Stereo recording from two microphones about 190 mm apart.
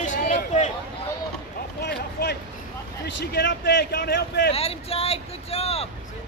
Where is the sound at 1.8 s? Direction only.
60° left (ahead or behind).